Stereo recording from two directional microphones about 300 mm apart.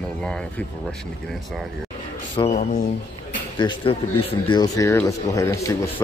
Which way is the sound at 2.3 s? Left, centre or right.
Left.